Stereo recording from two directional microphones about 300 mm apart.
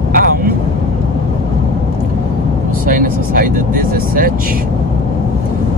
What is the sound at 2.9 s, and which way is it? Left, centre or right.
Speech, right.